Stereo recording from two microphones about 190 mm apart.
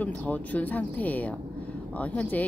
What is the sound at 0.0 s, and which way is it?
Speech, 10° left (ahead or behind).